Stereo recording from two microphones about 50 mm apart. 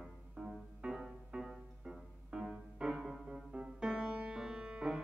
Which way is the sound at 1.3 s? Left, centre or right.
Centre.